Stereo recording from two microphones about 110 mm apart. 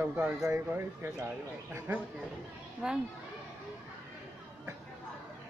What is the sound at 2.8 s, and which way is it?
Speech, 5° right (ahead or behind).